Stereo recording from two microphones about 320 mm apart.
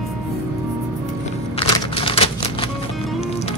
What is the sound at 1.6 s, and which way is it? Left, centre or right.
Typewriter, centre.